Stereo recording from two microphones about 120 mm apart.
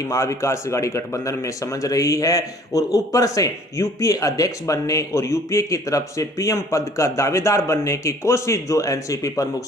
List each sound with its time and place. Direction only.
0.0 s speech: 25° left (ahead or behind)